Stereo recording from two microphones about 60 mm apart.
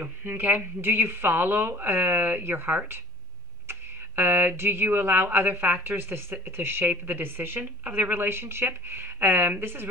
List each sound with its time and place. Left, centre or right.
0.2 s speech: right